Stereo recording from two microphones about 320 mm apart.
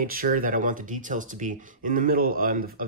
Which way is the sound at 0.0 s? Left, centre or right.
Right.